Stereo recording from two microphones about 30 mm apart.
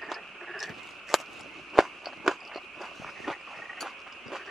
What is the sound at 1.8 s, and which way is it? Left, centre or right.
Walk, centre.